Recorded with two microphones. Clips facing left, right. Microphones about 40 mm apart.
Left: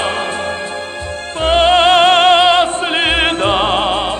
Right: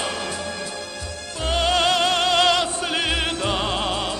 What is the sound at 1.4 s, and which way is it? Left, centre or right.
Music, left.